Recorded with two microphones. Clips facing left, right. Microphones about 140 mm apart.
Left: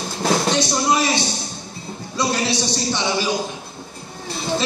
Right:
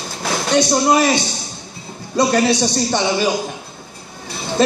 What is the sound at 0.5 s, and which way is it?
A man's voice, 50° right (ahead or behind).